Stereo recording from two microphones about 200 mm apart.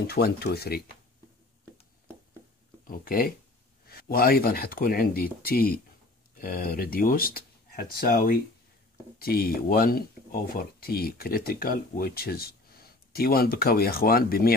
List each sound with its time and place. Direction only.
0.0 s speech: 50° left (ahead or behind)
2.9 s speech: 45° left (ahead or behind)